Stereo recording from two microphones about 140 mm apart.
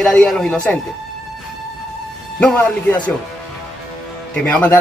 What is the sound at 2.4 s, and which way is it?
Speech, 10° left (ahead or behind).